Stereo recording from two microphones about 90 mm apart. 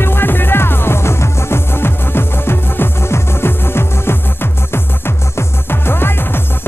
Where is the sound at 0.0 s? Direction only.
25° left (ahead or behind).